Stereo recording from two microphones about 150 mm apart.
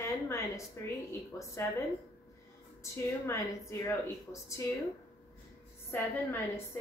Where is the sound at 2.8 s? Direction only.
20° left (ahead or behind).